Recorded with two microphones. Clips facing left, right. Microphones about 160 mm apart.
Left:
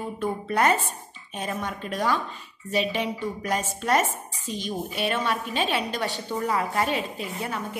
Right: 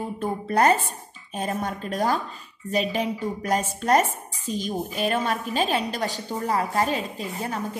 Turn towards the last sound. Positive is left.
turn(degrees=-35)  # may be behind; listen again after turning